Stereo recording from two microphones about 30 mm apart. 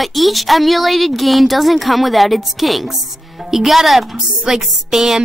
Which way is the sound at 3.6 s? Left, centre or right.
Centre.